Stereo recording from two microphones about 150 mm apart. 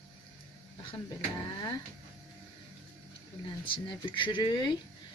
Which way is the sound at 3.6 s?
35° left (ahead or behind).